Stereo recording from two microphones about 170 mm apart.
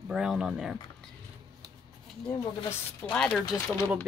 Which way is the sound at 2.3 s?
20° left (ahead or behind).